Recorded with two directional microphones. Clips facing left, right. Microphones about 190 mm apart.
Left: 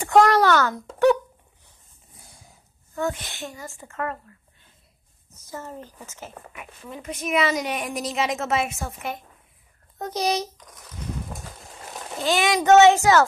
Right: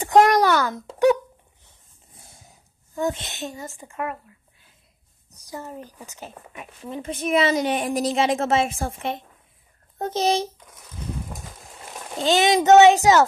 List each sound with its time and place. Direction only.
0.0 s a sound: 20° right (ahead or behind)
2.1 s a sound: 25° right (ahead or behind)
2.9 s speech: 20° right (ahead or behind)
5.4 s speech: 15° right (ahead or behind)
6.5 s a woman's voice: 25° right (ahead or behind)
12.2 s a woman's voice: 25° right (ahead or behind)